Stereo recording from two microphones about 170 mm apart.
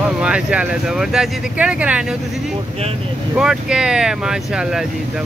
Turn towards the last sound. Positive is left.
turn(degrees=-5)  # may be behind; listen again after turning